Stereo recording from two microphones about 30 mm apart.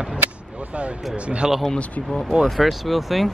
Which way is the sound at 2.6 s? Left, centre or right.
Centre.